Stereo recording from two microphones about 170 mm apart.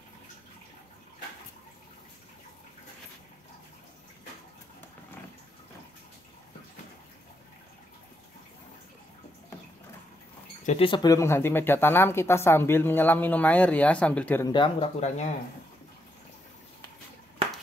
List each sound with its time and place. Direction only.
10.8 s speech: 30° left (ahead or behind); by 14.4 s 5° left (ahead or behind)
14.4 s speech: 25° left (ahead or behind)